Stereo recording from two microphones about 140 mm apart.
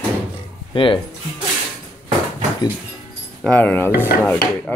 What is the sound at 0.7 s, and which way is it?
Speech, 35° left (ahead or behind).